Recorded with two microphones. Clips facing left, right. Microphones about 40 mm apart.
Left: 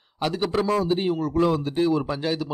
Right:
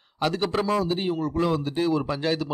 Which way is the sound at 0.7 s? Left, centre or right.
Left.